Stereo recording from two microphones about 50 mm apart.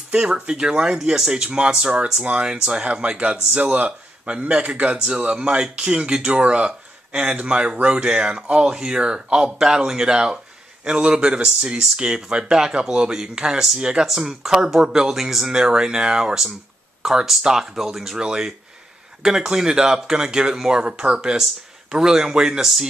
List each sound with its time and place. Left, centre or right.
0.1 s a man's voice: centre